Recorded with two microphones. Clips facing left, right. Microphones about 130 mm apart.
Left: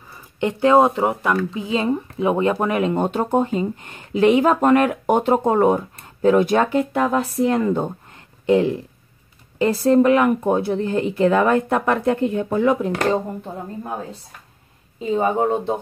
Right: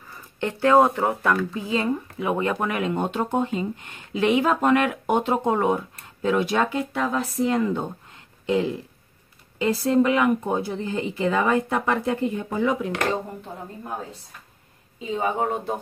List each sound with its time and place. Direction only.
0.1 s speech: 15° left (ahead or behind); by 7.9 s 45° left (ahead or behind)
8.5 s speech: 55° left (ahead or behind)
9.6 s speech: 45° left (ahead or behind); by 12.7 s 60° left (ahead or behind)
12.8 s speech: 35° left (ahead or behind)
15.1 s speech: 35° left (ahead or behind)